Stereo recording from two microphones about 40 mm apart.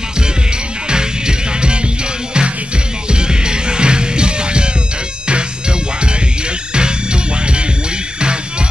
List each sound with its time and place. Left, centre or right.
0.8 s music: right
3.1 s music: right